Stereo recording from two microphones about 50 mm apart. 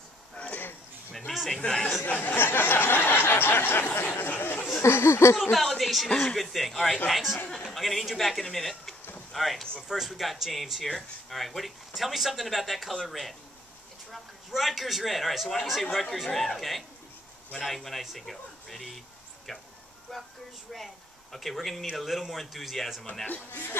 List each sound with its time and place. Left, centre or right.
0.4 s a sound: left
1.1 s speech: centre
2.0 s a sound: left
4.3 s speech: left
4.8 s speech: left
5.4 s speech: centre
20.7 s speech: centre
23.2 s speech: left